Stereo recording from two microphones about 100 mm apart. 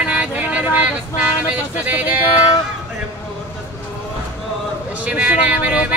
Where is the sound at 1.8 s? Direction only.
15° right (ahead or behind).